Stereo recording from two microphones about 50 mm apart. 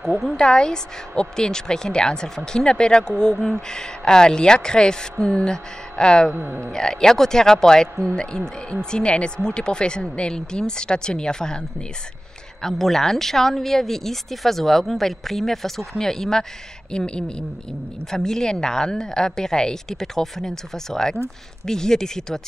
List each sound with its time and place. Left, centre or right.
0.4 s a woman's voice: centre
6.3 s speech: right
6.7 s a woman's voice: centre
12.6 s a woman's voice: centre